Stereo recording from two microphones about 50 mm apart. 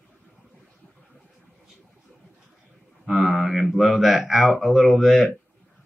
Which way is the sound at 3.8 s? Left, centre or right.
Centre.